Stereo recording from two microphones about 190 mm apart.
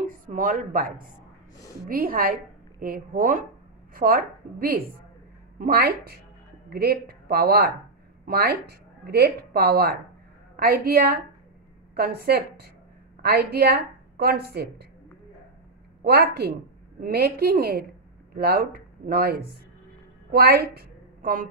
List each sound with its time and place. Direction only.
0.0 s a sound: 45° right (ahead or behind)
1.9 s a woman's voice: 50° right (ahead or behind)
16.0 s a woman's voice: 55° right (ahead or behind)